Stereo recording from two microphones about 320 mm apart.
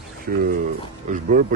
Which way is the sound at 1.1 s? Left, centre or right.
Right.